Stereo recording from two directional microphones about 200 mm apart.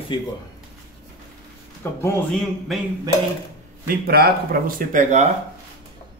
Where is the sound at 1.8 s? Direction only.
10° left (ahead or behind).